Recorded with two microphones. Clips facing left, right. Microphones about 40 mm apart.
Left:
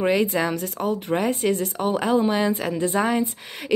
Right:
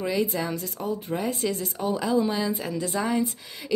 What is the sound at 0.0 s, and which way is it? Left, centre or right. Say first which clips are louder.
Speech: left 5 dB; left.